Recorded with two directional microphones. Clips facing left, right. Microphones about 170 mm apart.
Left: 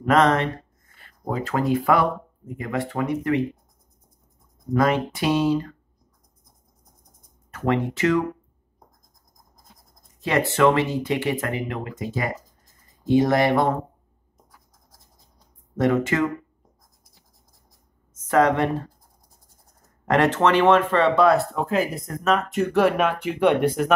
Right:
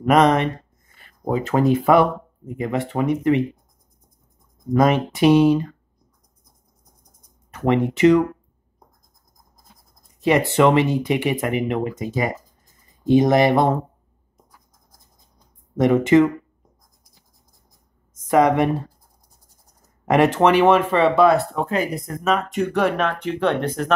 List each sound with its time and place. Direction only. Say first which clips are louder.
0.0 s speech: right 3 dB; 15° right (ahead or behind)
4.7 s speech: right 4 dB; 20° right (ahead or behind)
7.5 s speech: right 4 dB; 20° right (ahead or behind)
10.2 s speech: right 3 dB; 15° right (ahead or behind)
15.7 s speech: right 6 dB; 20° right (ahead or behind)
18.3 s speech: right 3 dB; 15° right (ahead or behind)
20.1 s speech: right 3 dB; 10° right (ahead or behind); by 23.9 s 10° left (ahead or behind)